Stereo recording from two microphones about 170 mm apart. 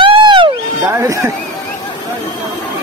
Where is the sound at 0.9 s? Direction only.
15° right (ahead or behind).